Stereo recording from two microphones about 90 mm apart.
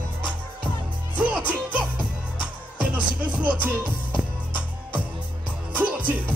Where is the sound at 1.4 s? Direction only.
15° right (ahead or behind).